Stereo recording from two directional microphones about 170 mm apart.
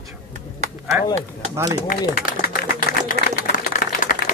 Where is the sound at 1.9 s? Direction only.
60° left (ahead or behind).